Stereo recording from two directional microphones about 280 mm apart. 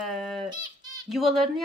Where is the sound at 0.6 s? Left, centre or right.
Centre.